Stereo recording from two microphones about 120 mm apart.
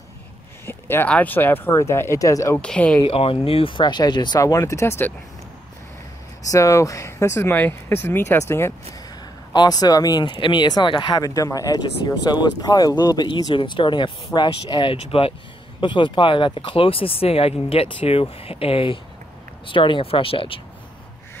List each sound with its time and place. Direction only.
0.7 s speech: 20° left (ahead or behind)
2.6 s speech: 10° left (ahead or behind)
3.0 s speech: 50° left (ahead or behind); by 5.1 s 20° left (ahead or behind)
6.5 s speech: 25° left (ahead or behind)
9.5 s speech: 35° left (ahead or behind)